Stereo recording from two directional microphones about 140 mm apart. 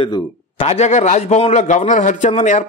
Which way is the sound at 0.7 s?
50° left (ahead or behind).